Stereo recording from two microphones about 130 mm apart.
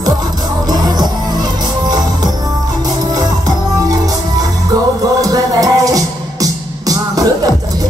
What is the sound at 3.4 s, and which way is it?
Music, 30° right (ahead or behind).